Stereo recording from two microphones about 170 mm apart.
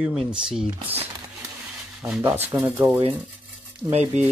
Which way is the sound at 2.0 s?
10° right (ahead or behind).